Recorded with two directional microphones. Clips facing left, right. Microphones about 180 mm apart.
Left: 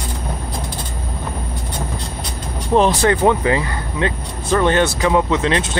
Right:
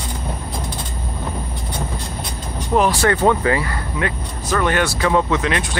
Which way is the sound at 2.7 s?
20° left (ahead or behind).